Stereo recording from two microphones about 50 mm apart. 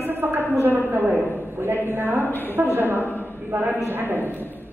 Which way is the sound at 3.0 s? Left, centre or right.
Left.